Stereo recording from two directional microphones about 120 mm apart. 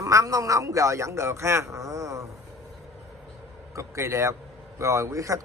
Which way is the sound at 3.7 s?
25° right (ahead or behind).